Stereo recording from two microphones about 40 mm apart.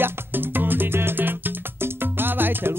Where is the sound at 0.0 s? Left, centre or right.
Right.